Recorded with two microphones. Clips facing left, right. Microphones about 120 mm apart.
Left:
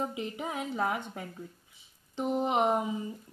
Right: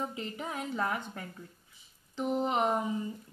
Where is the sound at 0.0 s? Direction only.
15° left (ahead or behind).